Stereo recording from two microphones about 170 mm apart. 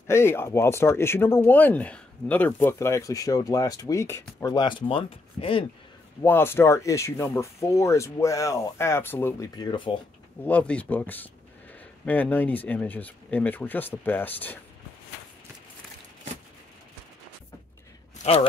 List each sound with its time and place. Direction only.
0.0 s speech: 15° left (ahead or behind); by 5.7 s 30° left (ahead or behind)
6.2 s speech: 15° left (ahead or behind)
10.4 s speech: 5° left (ahead or behind)
18.2 s speech: 40° left (ahead or behind)